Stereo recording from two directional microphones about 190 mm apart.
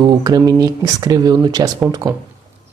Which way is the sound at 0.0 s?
20° right (ahead or behind).